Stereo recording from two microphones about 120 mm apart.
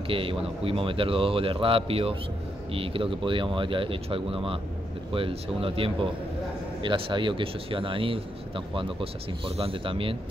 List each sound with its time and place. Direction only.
0.1 s speech: 50° right (ahead or behind)